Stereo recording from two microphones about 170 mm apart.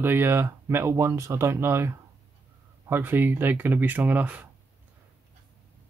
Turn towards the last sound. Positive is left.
turn(degrees=-10)  # may be behind; listen again after turning